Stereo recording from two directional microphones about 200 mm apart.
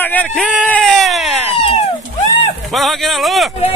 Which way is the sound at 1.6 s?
30° left (ahead or behind).